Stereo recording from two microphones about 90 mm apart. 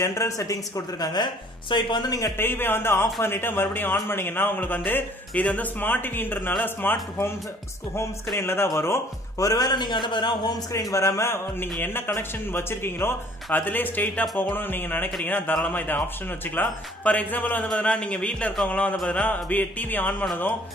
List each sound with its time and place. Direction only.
0.0 s speech: 35° left (ahead or behind); by 2.0 s 60° left (ahead or behind)
2.0 s speech: 40° left (ahead or behind)
2.3 s a man's voice: 25° left (ahead or behind); by 10.5 s 60° left (ahead or behind)
10.7 s a man's voice: 35° left (ahead or behind); by 20.2 s 20° left (ahead or behind)